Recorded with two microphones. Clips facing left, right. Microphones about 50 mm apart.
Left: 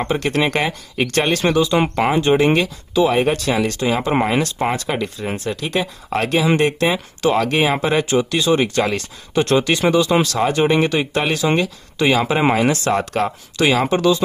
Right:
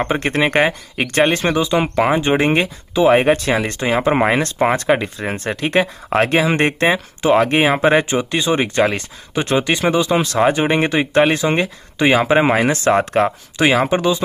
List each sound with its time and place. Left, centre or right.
0.1 s speech: right
2.4 s speech: right
7.2 s speech: right
7.4 s speech: right
9.3 s speech: centre
10.2 s speech: right